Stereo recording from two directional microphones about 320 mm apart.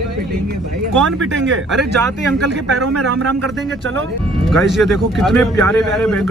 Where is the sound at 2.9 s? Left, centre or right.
Right.